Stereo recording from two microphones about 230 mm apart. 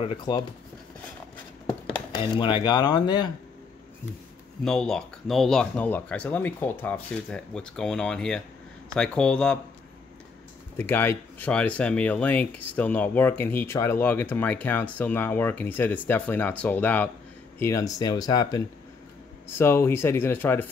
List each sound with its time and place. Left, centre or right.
0.0 s speech: left
2.1 s speech: left
4.6 s speech: centre
10.8 s speech: centre